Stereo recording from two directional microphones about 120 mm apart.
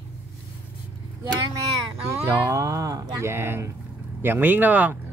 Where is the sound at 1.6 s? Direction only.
20° right (ahead or behind).